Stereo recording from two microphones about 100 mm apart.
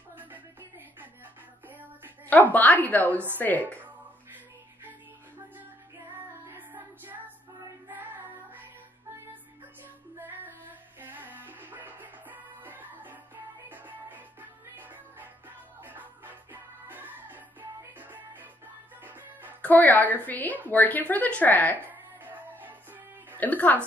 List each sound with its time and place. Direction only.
0.2 s music: 20° right (ahead or behind)
2.2 s a woman's voice: 15° left (ahead or behind)
6.5 s child singing: 20° right (ahead or behind)
7.9 s music: 20° right (ahead or behind)
10.1 s music: 20° right (ahead or behind)
19.6 s music: 15° left (ahead or behind)
20.2 s a woman's voice: 15° left (ahead or behind)
21.7 s music: 20° right (ahead or behind)
23.3 s speech: 15° left (ahead or behind)